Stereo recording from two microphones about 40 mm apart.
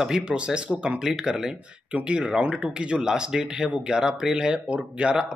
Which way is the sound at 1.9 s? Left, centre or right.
Right.